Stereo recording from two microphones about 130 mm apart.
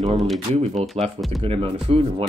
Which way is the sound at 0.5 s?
55° right (ahead or behind).